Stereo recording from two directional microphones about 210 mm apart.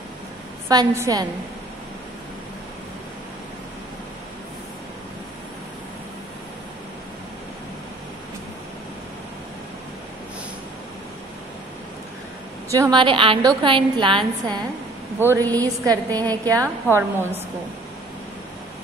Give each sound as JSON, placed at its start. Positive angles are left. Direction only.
{"t": 0.7, "sound": "a woman's voice", "side_deg": -15}
{"t": 12.7, "sound": "a woman's voice", "side_deg": -20}
{"t": 15.1, "sound": "a woman's voice", "side_deg": -10}